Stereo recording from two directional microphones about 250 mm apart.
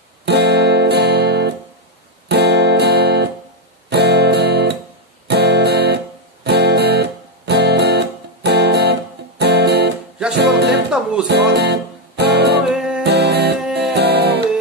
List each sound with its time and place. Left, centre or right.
0.2 s music: right
10.9 s music: centre
11.2 s music: right
12.6 s music: centre
13.0 s music: right
13.6 s music: centre
13.9 s music: right